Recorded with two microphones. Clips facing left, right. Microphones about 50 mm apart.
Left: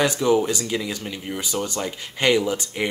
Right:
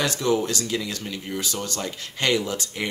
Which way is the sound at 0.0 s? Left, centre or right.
Centre.